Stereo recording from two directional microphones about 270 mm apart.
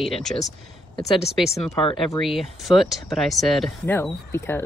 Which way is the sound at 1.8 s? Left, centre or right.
Centre.